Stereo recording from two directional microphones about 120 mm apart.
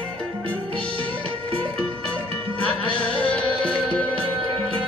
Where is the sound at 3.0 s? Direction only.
10° left (ahead or behind).